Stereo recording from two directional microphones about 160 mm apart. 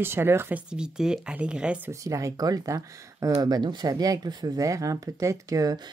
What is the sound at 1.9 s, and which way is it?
Speech, 20° right (ahead or behind).